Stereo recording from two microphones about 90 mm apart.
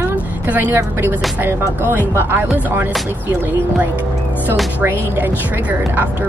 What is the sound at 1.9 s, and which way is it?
Speech, 25° right (ahead or behind).